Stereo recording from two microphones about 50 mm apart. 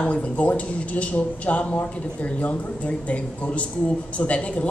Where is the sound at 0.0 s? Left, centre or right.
Left.